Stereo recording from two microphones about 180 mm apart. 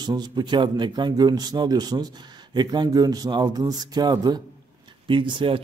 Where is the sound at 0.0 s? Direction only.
25° right (ahead or behind).